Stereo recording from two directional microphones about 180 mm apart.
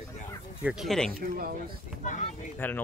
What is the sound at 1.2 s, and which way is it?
Speech, 55° right (ahead or behind).